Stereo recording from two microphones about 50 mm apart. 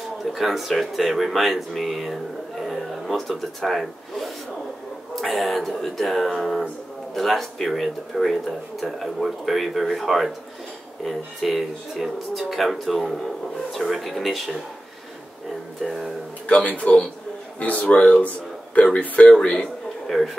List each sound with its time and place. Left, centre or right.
0.2 s speech: centre
2.6 s a sound: centre
3.2 s speech: centre
16.4 s speech: left